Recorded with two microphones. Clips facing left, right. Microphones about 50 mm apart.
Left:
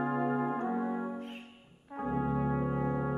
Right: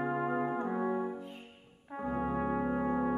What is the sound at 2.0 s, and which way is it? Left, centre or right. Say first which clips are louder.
Brass instrument: left 1 dB; centre.